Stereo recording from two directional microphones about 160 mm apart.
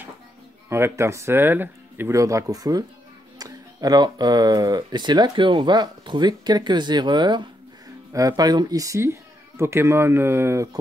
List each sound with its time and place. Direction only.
0.7 s speech: 15° right (ahead or behind)